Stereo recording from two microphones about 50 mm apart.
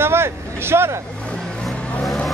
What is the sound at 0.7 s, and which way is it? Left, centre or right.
Vehicle, right.